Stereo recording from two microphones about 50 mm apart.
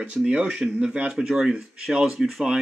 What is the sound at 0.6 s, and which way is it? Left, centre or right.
Speech, centre.